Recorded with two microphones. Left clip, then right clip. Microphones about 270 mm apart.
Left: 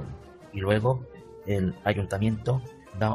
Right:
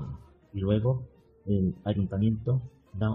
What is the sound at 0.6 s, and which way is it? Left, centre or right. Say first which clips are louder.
Speech: left 5 dB; left.